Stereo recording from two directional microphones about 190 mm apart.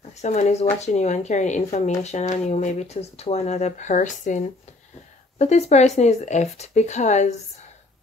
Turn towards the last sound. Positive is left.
turn(degrees=40)  # may be behind; listen again after turning